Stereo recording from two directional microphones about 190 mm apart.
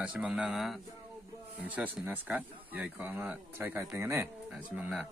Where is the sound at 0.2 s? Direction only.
5° right (ahead or behind).